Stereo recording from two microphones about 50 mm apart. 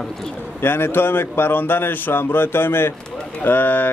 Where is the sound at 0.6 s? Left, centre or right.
Left.